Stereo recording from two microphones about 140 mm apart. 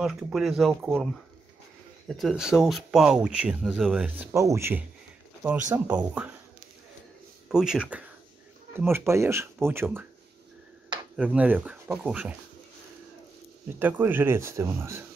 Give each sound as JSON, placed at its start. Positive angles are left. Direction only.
{"t": 0.0, "sound": "speech", "side_deg": -5}
{"t": 2.0, "sound": "speech", "side_deg": 0}
{"t": 4.3, "sound": "speech", "side_deg": -20}
{"t": 5.9, "sound": "speech", "side_deg": -10}
{"t": 7.4, "sound": "speech", "side_deg": -5}
{"t": 8.7, "sound": "speech", "side_deg": -15}
{"t": 11.1, "sound": "speech", "side_deg": -10}
{"t": 13.7, "sound": "speech", "side_deg": -15}